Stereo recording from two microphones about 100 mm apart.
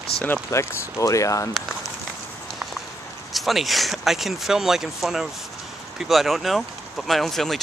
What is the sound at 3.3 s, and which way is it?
Speech, centre (ahead or behind).